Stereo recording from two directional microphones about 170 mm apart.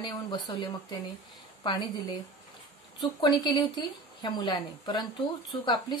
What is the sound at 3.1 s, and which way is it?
Speech, 25° left (ahead or behind).